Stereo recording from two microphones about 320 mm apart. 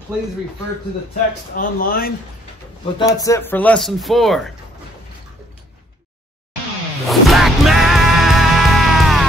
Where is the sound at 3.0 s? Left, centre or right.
Centre.